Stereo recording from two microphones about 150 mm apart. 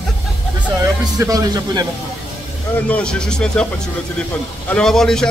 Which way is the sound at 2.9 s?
5° left (ahead or behind).